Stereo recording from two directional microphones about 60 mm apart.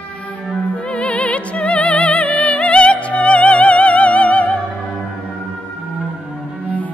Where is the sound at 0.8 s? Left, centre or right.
Centre.